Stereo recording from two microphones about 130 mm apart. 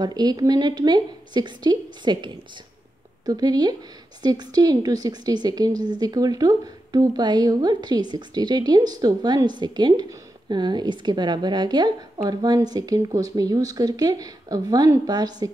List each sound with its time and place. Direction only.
0.0 s a woman's voice: 30° right (ahead or behind)